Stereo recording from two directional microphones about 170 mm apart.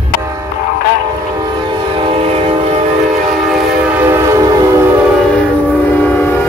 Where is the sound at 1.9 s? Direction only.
30° right (ahead or behind).